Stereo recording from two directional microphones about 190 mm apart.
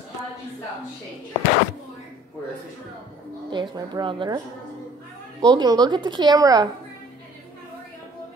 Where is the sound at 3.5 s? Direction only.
25° right (ahead or behind).